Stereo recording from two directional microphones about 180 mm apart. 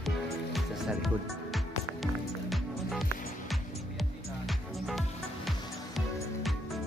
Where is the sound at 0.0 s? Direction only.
Centre (ahead or behind).